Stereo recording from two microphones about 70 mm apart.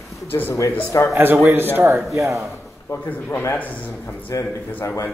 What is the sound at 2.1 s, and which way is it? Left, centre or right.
Speech, right.